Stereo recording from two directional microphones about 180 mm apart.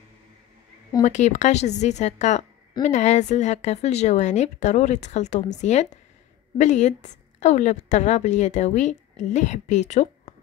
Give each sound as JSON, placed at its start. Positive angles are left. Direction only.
{"t": 1.0, "sound": "a woman's voice", "side_deg": 40}